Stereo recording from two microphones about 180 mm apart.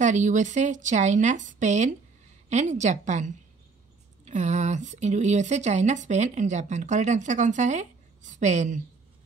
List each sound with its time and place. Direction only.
0.0 s a woman's voice: 40° right (ahead or behind)